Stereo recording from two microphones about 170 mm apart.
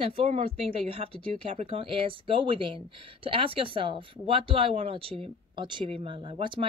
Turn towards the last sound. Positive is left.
turn(degrees=-30)  # may be behind; listen again after turning